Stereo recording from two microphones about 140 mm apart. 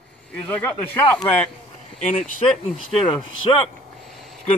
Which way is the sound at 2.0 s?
60° left (ahead or behind).